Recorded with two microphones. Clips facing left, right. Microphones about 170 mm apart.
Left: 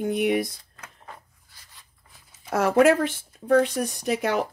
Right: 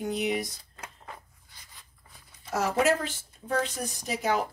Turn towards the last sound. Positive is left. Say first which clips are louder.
# left 4 dB
turn(degrees=65)  # may be behind; listen again after turning